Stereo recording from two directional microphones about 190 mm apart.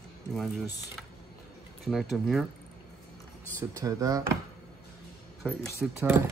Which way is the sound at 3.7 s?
20° right (ahead or behind).